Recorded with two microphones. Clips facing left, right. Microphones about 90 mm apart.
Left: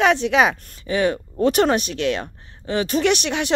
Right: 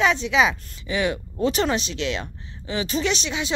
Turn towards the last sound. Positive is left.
turn(degrees=60)  # may be behind; listen again after turning